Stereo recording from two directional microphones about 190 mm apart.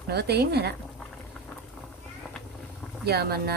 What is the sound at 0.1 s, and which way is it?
Speech, 60° right (ahead or behind).